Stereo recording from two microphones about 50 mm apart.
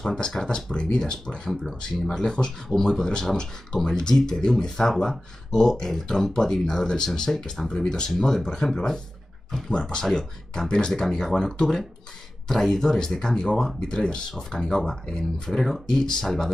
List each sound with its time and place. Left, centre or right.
0.0 s speech: centre
0.7 s speech: centre
1.5 s speech: centre
9.7 s speech: centre